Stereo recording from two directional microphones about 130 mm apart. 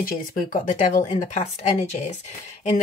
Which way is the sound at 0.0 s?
90° left.